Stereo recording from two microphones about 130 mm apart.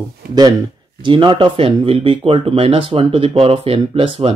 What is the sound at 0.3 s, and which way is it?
Speech, 30° right (ahead or behind).